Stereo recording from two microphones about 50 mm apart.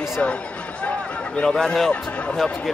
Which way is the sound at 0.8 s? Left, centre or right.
Left.